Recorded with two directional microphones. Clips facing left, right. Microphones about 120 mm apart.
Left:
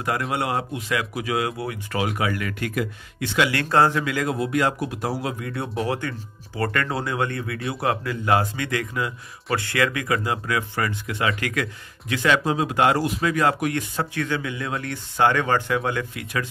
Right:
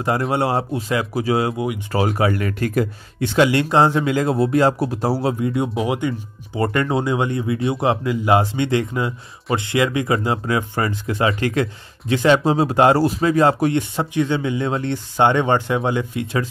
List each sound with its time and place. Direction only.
0.0 s speech: 30° right (ahead or behind)
3.4 s speech: 20° right (ahead or behind)
5.9 s speech: 15° right (ahead or behind)